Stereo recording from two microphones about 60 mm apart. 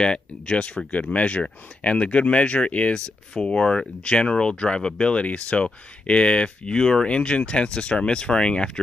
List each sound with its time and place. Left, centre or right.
0.0 s speech: centre